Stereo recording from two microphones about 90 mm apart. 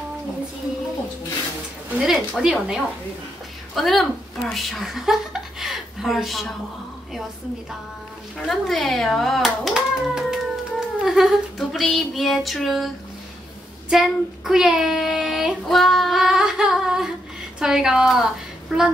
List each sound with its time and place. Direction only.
2.0 s a child's voice: 5° right (ahead or behind)
8.4 s a child's voice: centre (ahead or behind)
9.8 s cat: 5° right (ahead or behind)
11.1 s a child's voice: 5° right (ahead or behind)